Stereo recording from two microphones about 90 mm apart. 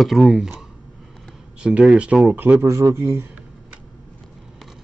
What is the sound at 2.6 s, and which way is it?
Speech, 35° right (ahead or behind).